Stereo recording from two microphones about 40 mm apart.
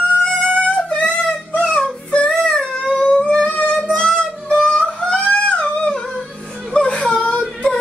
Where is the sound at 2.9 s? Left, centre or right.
Left.